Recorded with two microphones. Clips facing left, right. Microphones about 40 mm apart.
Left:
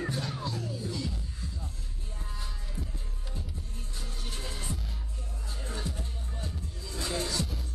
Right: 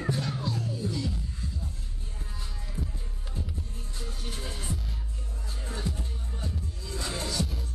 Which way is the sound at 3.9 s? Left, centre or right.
Centre.